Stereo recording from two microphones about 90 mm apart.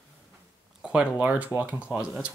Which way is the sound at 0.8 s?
15° right (ahead or behind).